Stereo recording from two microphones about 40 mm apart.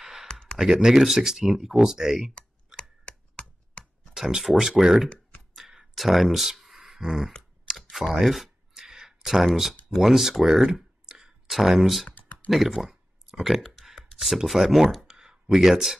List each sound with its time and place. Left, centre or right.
0.0 s a sound: centre
0.6 s speech: centre
2.3 s a sound: left
4.4 s speech: centre
5.6 s clicking: centre
5.9 s speech: centre
7.7 s a sound: centre
9.9 s speech: centre
10.7 s clicking: centre
11.4 s speech: centre
12.8 s a sound: centre
13.6 s clicking: centre
13.9 s speech: centre